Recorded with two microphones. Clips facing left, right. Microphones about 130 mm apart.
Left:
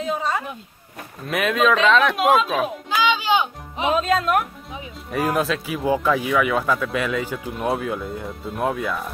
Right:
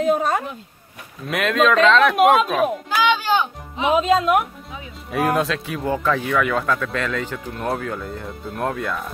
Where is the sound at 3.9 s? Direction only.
15° right (ahead or behind).